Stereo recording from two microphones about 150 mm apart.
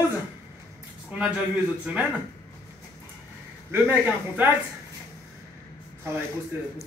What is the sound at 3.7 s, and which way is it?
Speech, 15° right (ahead or behind).